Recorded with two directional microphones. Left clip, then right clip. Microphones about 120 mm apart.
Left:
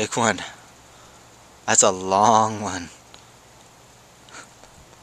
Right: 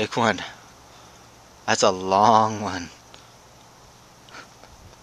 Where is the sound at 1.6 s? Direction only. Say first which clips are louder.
Left 1 dB; centre (ahead or behind).